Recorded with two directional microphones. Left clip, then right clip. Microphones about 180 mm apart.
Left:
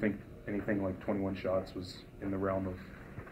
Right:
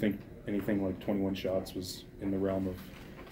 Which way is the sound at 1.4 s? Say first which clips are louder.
Even; 90° right.